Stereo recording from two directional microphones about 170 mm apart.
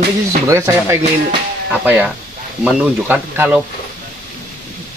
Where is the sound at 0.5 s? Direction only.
15° right (ahead or behind).